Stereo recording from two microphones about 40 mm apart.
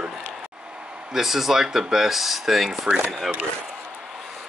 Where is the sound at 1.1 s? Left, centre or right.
Centre.